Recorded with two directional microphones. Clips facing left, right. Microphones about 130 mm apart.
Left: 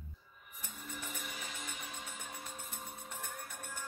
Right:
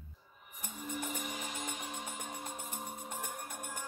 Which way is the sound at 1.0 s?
50° right (ahead or behind).